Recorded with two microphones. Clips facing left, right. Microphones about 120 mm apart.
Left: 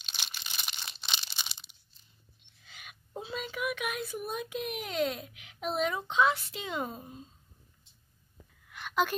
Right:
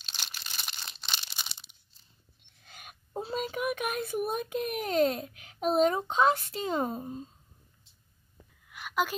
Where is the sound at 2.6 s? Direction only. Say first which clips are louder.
Right 2 dB; 45° right (ahead or behind).